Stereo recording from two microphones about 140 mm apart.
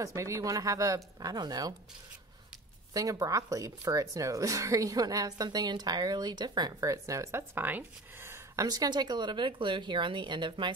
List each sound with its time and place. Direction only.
0.0 s speech: 20° right (ahead or behind)
2.9 s speech: 25° right (ahead or behind)